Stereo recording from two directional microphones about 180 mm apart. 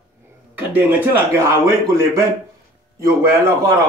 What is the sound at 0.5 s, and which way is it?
A man's voice, 10° right (ahead or behind).